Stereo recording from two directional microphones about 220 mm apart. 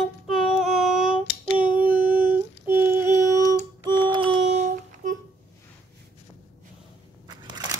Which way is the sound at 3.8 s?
20° right (ahead or behind).